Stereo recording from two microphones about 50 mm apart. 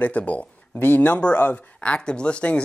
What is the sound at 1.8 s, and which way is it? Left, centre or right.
Speech, centre.